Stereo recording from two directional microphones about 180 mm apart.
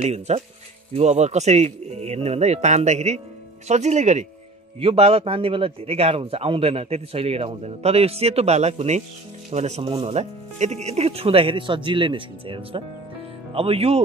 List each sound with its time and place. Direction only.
0.0 s a man's voice: 35° right (ahead or behind)